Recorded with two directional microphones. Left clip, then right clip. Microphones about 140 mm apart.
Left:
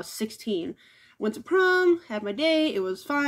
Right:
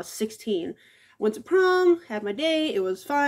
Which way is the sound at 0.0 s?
45° left (ahead or behind).